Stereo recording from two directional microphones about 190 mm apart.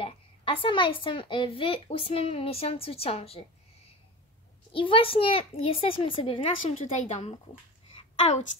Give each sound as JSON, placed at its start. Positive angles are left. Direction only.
{"t": 0.0, "sound": "speech", "side_deg": 30}
{"t": 4.7, "sound": "speech", "side_deg": 30}